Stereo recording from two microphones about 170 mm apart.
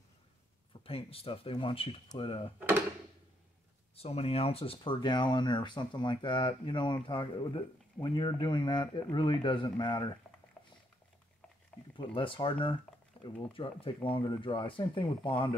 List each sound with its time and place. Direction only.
0.8 s speech: 35° left (ahead or behind)
3.9 s speech: 35° left (ahead or behind)
10.6 s liquid: 5° left (ahead or behind)
12.0 s speech: 30° left (ahead or behind)